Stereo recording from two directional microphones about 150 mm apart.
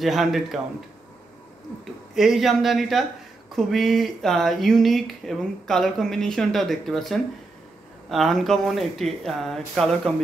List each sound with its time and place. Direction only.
0.0 s speech: centre (ahead or behind)
2.1 s speech: centre (ahead or behind)